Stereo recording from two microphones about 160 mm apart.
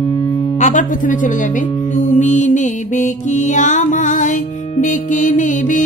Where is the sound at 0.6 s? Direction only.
55° left (ahead or behind).